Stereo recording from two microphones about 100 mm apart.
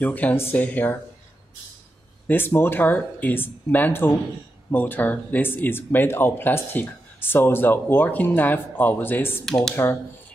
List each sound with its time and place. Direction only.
0.0 s speech: 15° left (ahead or behind)
2.2 s speech: 20° left (ahead or behind)
9.5 s speech: 5° left (ahead or behind)